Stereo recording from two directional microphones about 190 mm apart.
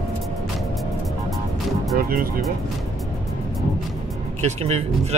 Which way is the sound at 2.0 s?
50° right (ahead or behind).